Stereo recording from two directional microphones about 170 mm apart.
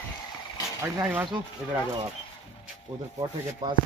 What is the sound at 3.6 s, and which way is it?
Speech, 25° right (ahead or behind).